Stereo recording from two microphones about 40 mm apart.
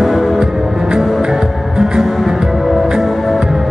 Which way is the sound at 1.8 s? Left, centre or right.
Centre.